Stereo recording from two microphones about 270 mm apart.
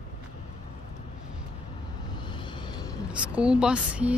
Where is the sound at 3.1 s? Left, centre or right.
Centre.